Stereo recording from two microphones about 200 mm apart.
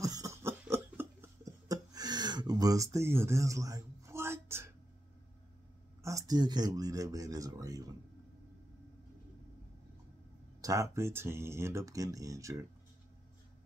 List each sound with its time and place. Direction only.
0.0 s a sound: 15° right (ahead or behind)
6.0 s speech: 15° right (ahead or behind)
10.6 s speech: 15° right (ahead or behind)